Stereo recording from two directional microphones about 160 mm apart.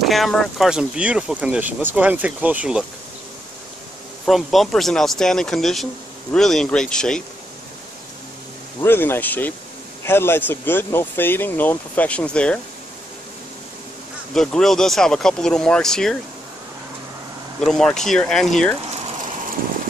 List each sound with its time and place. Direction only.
0.0 s speech: centre (ahead or behind)
4.3 s speech: centre (ahead or behind)
8.8 s speech: 15° left (ahead or behind)
14.3 s speech: 5° left (ahead or behind)
17.6 s speech: 5° left (ahead or behind)
18.9 s a sound: 45° right (ahead or behind)